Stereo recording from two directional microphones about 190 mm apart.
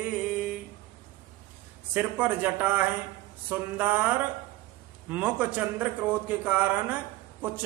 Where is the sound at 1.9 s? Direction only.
10° right (ahead or behind).